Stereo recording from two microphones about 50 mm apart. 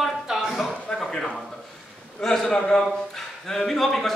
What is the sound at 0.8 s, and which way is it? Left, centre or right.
Speech, centre.